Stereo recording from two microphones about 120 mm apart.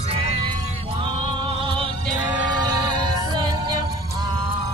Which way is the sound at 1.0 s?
50° right (ahead or behind).